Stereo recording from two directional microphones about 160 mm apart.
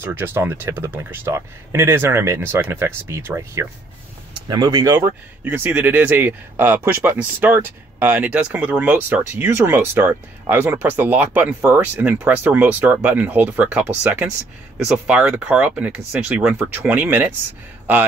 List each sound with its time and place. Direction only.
0.0 s speech: 15° right (ahead or behind)
5.4 s speech: 10° right (ahead or behind)